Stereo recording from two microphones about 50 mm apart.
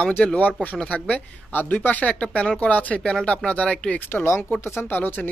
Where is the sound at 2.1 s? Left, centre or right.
Centre.